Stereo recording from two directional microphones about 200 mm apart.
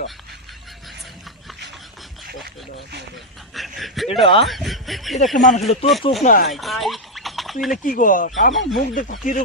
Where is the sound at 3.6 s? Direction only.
Centre (ahead or behind).